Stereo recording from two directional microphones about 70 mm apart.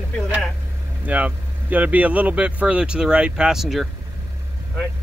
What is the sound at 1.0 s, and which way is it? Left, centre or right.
Speech, right.